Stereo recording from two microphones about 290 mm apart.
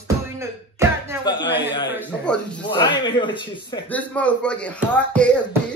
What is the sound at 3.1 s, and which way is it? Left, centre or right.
Speech, centre.